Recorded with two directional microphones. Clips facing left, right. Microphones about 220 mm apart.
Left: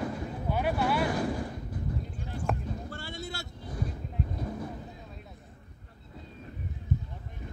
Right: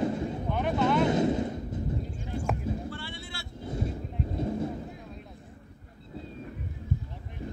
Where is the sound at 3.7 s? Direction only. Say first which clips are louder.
Right 5 dB; 25° right (ahead or behind).